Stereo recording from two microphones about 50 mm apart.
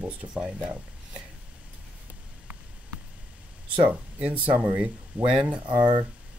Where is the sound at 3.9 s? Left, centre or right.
Right.